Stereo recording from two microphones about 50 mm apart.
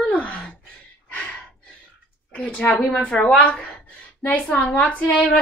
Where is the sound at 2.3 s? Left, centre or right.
Left.